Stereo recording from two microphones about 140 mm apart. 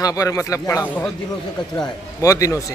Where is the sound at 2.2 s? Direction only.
25° left (ahead or behind).